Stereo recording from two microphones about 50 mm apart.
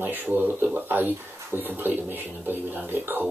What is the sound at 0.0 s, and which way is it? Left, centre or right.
Speech, right.